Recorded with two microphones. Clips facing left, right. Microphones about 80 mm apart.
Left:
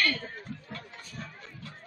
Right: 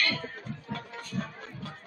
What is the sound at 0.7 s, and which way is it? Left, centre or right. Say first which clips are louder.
Music: right 7 dB; right.